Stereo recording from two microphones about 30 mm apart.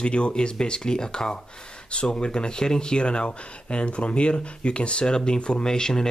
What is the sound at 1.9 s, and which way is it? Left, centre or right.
Speech, left.